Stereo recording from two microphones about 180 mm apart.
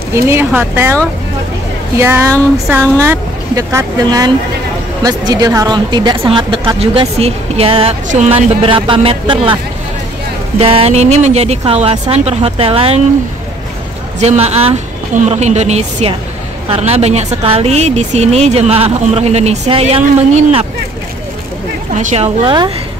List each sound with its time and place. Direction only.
0.1 s speech: 15° right (ahead or behind)
2.0 s a woman's voice: 15° right (ahead or behind); by 9.6 s 30° right (ahead or behind)
10.6 s a woman's voice: 30° right (ahead or behind)
14.2 s a woman's voice: 35° right (ahead or behind)
21.9 s a woman's voice: 40° right (ahead or behind)